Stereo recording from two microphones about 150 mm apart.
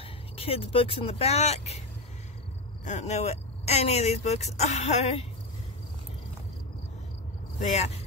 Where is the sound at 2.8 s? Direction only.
50° left (ahead or behind).